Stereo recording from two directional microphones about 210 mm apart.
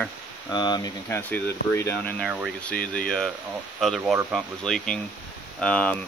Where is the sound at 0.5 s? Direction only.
20° left (ahead or behind).